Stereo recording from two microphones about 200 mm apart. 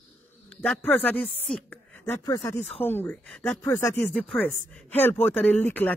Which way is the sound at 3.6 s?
15° left (ahead or behind).